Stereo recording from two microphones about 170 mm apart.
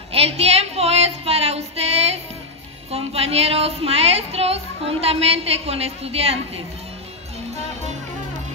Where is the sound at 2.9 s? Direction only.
35° right (ahead or behind).